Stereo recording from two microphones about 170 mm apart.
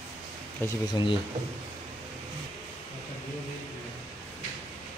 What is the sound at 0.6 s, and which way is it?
Speech, 10° left (ahead or behind).